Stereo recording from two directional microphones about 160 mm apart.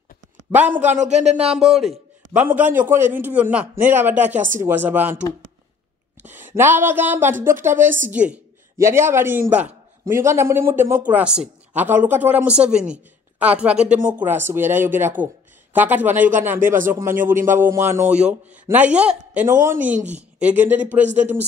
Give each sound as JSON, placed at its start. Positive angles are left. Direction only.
{"t": 0.5, "sound": "speech", "side_deg": -10}
{"t": 0.8, "sound": "speech", "side_deg": -50}
{"t": 1.5, "sound": "a man's voice", "side_deg": 0}
{"t": 4.4, "sound": "speech", "side_deg": -55}
{"t": 4.6, "sound": "speech", "side_deg": -10}
{"t": 6.3, "sound": "speech", "side_deg": -15}
{"t": 16.5, "sound": "speech", "side_deg": -55}
{"t": 16.8, "sound": "speech", "side_deg": -15}
{"t": 17.1, "sound": "speech", "side_deg": -55}
{"t": 17.6, "sound": "speech", "side_deg": -15}
{"t": 21.0, "sound": "speech", "side_deg": -50}